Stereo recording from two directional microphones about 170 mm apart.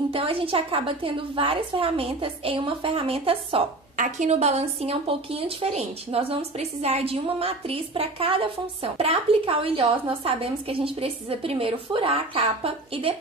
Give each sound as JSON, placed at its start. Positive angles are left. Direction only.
{"t": 0.1, "sound": "a woman's voice", "side_deg": -30}
{"t": 3.9, "sound": "a woman's voice", "side_deg": -45}